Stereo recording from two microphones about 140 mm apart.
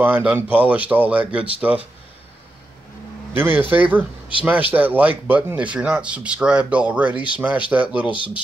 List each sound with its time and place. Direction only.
0.0 s speech: 10° right (ahead or behind)
3.3 s speech: 15° right (ahead or behind)
8.1 s speech: 35° left (ahead or behind)